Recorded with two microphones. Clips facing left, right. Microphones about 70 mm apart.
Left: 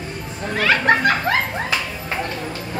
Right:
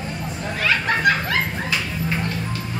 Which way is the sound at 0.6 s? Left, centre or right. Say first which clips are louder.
Left 4 dB; left.